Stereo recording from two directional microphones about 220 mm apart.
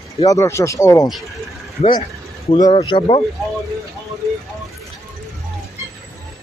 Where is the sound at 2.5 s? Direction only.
20° left (ahead or behind).